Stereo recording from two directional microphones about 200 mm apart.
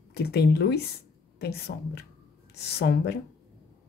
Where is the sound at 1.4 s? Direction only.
55° left (ahead or behind).